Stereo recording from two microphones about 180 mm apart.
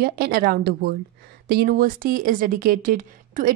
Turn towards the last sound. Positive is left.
turn(degrees=-50)  # may be behind; listen again after turning